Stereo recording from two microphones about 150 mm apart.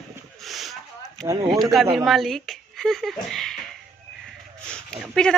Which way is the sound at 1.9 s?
Centre (ahead or behind).